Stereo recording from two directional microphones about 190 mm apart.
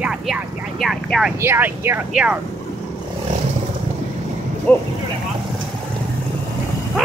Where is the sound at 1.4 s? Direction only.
10° right (ahead or behind).